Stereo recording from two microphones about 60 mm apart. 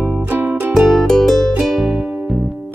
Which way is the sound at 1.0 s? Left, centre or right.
Centre.